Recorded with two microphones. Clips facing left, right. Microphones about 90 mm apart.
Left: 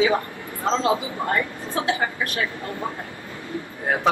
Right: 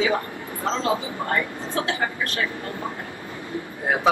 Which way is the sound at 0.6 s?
20° left (ahead or behind).